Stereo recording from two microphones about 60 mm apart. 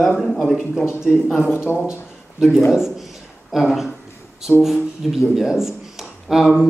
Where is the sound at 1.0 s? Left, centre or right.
Centre.